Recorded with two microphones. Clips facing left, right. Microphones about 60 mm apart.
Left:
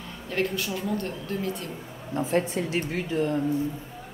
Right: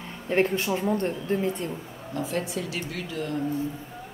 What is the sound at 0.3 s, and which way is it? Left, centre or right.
A woman's voice, right.